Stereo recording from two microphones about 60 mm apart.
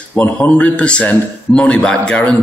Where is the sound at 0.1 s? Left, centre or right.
Left.